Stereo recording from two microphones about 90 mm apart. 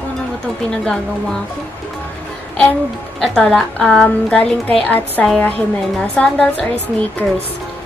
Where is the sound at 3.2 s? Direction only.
5° left (ahead or behind).